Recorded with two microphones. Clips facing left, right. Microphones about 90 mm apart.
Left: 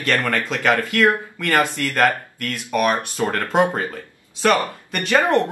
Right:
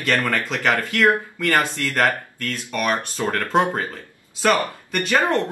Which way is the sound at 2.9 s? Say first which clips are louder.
Left 1 dB; 20° left (ahead or behind).